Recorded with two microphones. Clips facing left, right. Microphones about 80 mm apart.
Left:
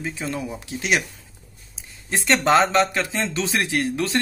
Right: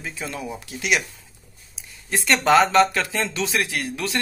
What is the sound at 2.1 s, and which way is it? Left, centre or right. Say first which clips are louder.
Speech: even; left.